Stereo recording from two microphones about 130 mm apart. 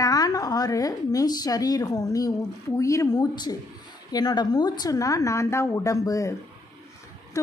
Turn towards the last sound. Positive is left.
turn(degrees=25)  # may be behind; listen again after turning